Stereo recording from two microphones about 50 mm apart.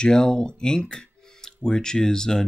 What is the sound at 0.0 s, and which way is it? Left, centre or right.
Speech, centre.